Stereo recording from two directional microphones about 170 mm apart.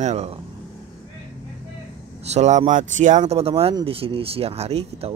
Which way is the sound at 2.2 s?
40° right (ahead or behind).